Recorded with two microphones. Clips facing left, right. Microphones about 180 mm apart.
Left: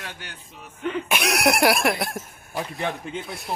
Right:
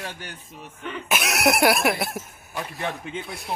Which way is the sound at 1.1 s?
Centre (ahead or behind).